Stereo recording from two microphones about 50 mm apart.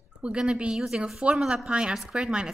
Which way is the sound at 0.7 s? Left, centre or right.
Centre.